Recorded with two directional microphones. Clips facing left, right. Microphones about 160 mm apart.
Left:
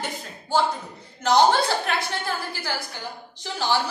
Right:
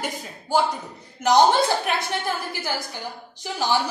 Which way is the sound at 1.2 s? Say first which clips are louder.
Right 1 dB; 15° right (ahead or behind).